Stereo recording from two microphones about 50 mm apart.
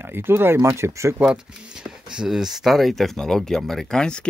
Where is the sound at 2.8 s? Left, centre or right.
Centre.